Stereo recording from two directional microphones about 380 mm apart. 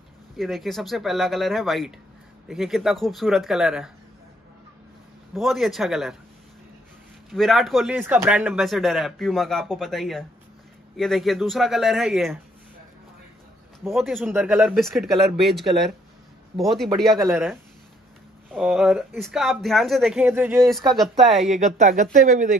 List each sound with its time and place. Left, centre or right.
0.4 s speech: centre
5.3 s speech: centre
7.2 s speech: centre
13.8 s speech: centre
21.4 s speech: centre